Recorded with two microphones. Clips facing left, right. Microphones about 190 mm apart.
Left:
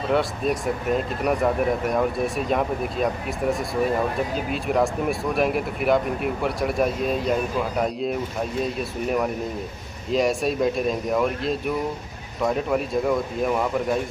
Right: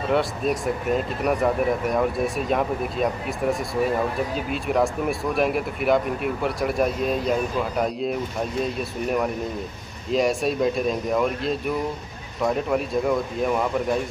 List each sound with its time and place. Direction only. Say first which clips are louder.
0.1 s speech: even; centre (ahead or behind)
10.1 s speech: even; centre (ahead or behind)